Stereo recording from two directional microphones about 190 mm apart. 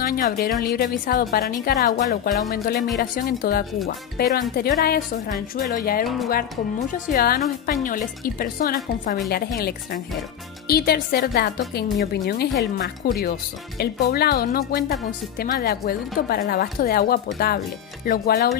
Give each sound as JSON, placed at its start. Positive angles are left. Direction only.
{"t": 0.0, "sound": "speech", "side_deg": 50}
{"t": 10.7, "sound": "speech", "side_deg": 55}